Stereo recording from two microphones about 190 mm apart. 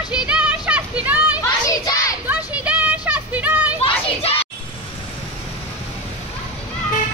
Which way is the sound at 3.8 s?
30° left (ahead or behind).